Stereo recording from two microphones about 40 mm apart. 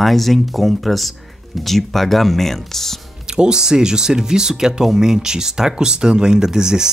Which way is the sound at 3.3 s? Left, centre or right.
Centre.